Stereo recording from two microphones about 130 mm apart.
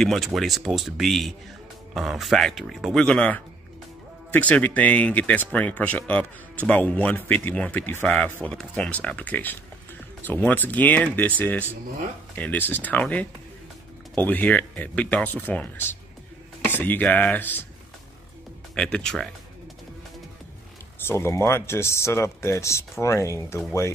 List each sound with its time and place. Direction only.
0.0 s speech: centre (ahead or behind)
18.8 s speech: 5° left (ahead or behind)
21.1 s speech: 20° left (ahead or behind)